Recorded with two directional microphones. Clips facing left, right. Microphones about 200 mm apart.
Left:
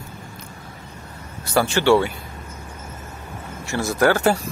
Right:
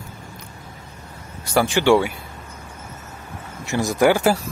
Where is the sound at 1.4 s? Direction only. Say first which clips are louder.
Right 1 dB; 15° right (ahead or behind).